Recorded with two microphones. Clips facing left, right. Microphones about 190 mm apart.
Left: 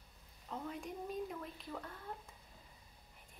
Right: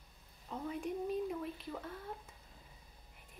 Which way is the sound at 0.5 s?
5° right (ahead or behind).